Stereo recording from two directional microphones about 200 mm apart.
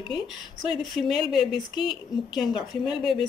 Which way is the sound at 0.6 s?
Centre (ahead or behind).